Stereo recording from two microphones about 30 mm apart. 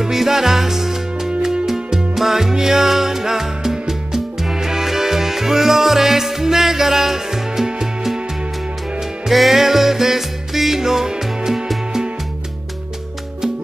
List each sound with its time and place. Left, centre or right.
0.0 s music: centre
9.3 s music: centre